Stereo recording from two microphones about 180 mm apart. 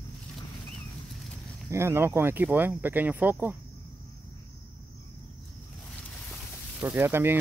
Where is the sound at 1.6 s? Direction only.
15° right (ahead or behind).